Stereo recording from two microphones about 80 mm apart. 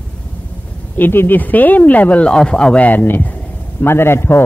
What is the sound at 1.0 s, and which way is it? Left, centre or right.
A man's voice, left.